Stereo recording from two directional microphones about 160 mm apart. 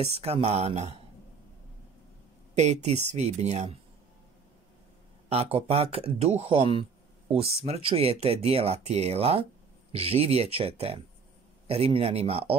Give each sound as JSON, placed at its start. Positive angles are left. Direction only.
{"t": 0.0, "sound": "speech", "side_deg": -40}
{"t": 2.5, "sound": "speech", "side_deg": -45}
{"t": 5.3, "sound": "speech", "side_deg": -35}